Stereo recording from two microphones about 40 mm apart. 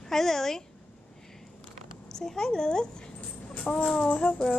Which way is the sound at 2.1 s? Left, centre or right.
Centre.